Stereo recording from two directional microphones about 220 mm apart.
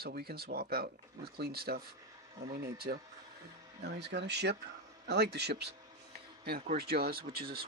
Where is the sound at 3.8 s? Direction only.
50° right (ahead or behind).